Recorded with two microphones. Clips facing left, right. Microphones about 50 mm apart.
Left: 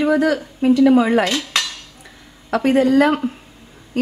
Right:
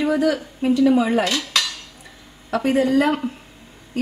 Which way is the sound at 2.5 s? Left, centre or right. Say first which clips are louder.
Left 3 dB; left.